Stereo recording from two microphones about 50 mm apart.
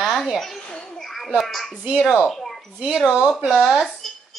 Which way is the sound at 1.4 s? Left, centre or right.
Centre.